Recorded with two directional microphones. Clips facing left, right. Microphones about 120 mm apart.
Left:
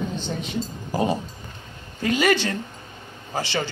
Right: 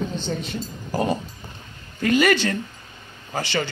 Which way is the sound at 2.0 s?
20° left (ahead or behind).